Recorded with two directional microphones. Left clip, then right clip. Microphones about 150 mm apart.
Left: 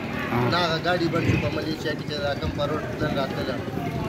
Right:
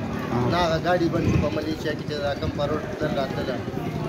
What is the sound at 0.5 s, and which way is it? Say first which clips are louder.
Speech: right 2 dB; 15° right (ahead or behind).